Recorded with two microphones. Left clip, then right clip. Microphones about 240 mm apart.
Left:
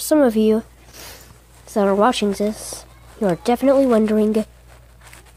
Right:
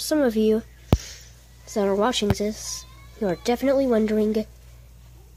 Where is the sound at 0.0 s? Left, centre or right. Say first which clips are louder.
Left 6 dB; centre.